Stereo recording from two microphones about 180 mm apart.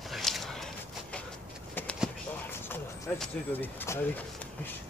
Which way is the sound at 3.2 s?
10° left (ahead or behind).